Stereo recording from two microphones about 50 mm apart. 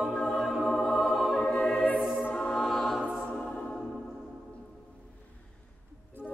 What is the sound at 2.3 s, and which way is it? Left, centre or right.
Music, centre.